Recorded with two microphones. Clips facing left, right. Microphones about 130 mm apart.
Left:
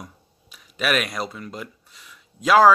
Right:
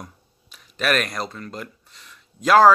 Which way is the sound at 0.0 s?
5° left (ahead or behind).